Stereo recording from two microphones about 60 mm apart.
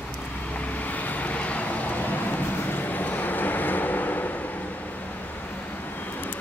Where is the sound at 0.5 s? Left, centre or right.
Left.